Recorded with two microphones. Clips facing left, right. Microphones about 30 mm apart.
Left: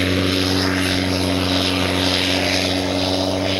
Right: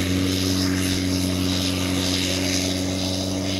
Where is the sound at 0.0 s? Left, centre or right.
Left.